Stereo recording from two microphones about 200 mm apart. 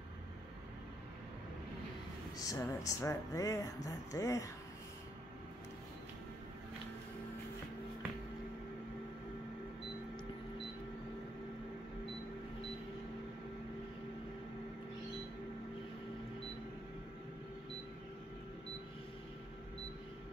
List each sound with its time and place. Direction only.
2.3 s speech: 15° left (ahead or behind)